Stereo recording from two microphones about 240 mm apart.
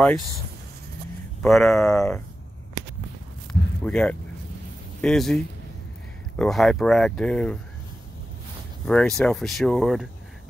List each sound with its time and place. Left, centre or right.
1.4 s speech: centre
3.8 s speech: centre
8.8 s speech: centre